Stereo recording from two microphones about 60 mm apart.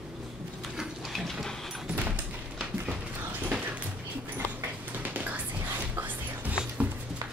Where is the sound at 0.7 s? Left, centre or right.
Centre.